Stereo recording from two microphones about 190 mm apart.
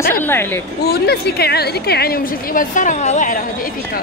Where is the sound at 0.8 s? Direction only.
55° left (ahead or behind).